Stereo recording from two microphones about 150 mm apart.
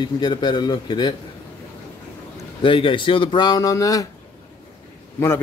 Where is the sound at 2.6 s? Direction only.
35° left (ahead or behind).